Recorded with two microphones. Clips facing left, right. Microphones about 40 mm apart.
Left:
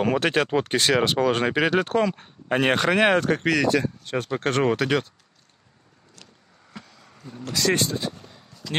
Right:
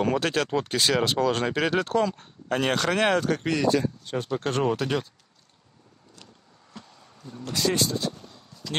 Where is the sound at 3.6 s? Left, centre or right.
Left.